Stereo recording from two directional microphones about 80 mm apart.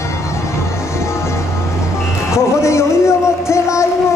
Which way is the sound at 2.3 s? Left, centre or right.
Left.